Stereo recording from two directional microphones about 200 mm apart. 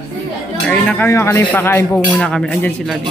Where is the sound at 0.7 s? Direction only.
5° left (ahead or behind).